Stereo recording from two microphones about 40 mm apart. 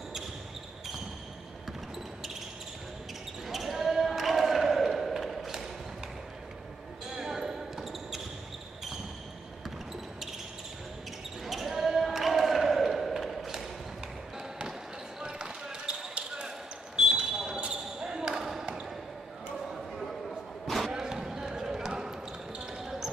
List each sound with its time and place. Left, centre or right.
3.4 s basketball bounce: centre
7.1 s basketball bounce: centre
11.4 s basketball bounce: centre
15.2 s basketball bounce: centre
19.5 s a sound: centre
20.6 s basketball bounce: centre
20.9 s basketball bounce: centre